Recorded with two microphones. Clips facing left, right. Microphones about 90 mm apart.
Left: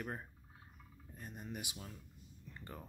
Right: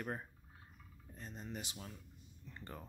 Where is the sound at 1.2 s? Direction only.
15° left (ahead or behind).